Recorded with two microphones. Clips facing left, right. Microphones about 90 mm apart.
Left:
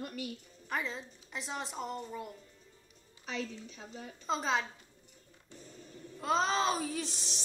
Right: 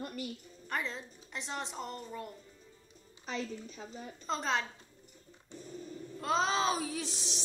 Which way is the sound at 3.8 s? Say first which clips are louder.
Right 1 dB; centre (ahead or behind).